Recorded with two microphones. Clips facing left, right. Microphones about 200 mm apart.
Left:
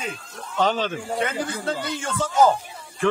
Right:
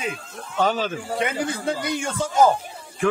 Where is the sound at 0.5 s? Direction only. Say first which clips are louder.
Even; 10° right (ahead or behind).